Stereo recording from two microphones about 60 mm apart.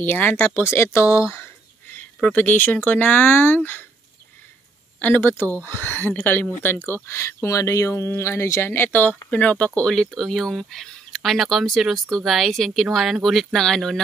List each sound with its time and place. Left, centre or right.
0.0 s speech: left
0.7 s speech: left
2.3 s speech: left
5.0 s speech: left
7.4 s speech: left
8.6 s speech: left
9.8 s speech: centre